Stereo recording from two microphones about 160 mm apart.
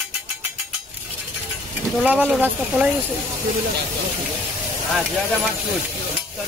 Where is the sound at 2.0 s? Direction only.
5° right (ahead or behind).